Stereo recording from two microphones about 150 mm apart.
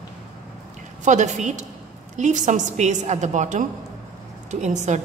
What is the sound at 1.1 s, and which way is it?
A woman's voice, 50° right (ahead or behind).